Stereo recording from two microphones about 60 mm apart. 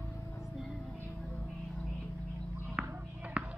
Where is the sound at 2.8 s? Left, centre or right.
Centre.